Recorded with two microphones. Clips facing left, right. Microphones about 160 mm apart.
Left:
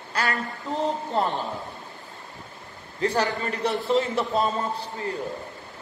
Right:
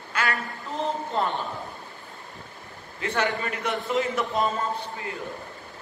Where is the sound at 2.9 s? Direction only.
35° left (ahead or behind).